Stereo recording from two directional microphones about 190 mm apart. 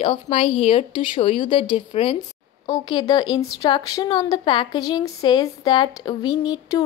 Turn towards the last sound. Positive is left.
turn(degrees=20)  # may be behind; listen again after turning